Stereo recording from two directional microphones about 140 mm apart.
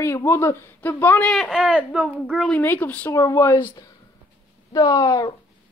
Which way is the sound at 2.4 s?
10° left (ahead or behind).